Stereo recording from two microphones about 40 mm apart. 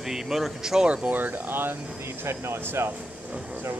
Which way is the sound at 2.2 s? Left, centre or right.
Right.